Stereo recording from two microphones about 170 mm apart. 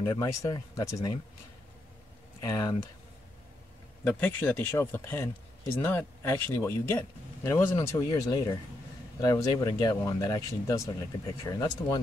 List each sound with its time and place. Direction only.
0.0 s speech: 20° left (ahead or behind)
2.4 s speech: 20° left (ahead or behind)
4.0 s speech: 10° left (ahead or behind)